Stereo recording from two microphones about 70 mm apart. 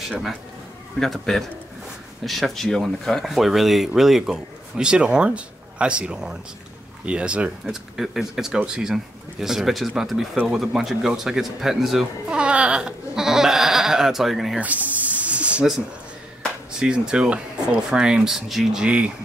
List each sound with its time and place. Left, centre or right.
0.9 s speech: centre
7.1 s goat: centre
7.6 s speech: centre
12.3 s goat: centre
14.6 s snake: right
16.8 s goat: centre